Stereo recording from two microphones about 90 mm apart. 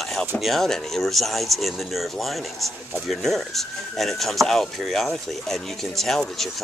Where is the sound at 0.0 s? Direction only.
Centre (ahead or behind).